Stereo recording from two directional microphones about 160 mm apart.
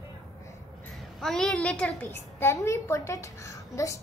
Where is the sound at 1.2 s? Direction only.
Centre (ahead or behind); by 3.9 s 20° left (ahead or behind).